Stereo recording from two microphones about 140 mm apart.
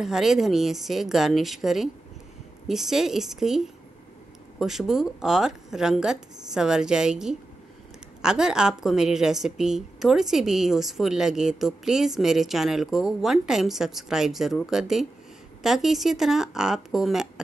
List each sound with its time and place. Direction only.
0.0 s a woman's voice: centre (ahead or behind)